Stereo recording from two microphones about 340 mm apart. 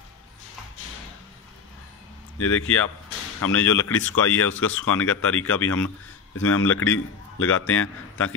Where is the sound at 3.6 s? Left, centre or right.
Left.